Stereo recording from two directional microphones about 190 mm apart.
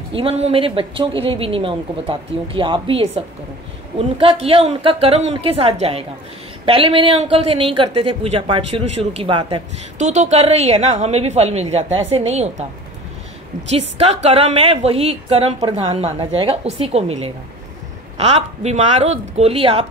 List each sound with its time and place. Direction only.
0.1 s a woman's voice: 30° right (ahead or behind)
13.7 s speech: 35° right (ahead or behind)